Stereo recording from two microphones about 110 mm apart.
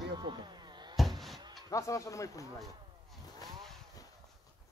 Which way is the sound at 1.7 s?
30° left (ahead or behind).